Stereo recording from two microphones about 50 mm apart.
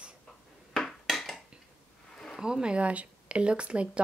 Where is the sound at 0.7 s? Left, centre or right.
Centre.